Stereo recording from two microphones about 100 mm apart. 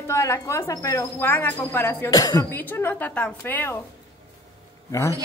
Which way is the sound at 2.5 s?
20° left (ahead or behind).